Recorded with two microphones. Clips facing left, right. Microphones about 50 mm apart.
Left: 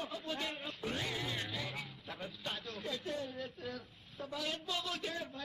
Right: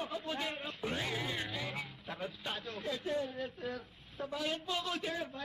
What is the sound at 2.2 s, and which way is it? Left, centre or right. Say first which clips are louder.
A woman's voice: right 2 dB; centre.